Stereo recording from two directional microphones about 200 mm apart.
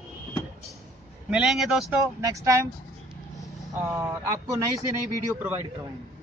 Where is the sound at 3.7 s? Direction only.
15° right (ahead or behind).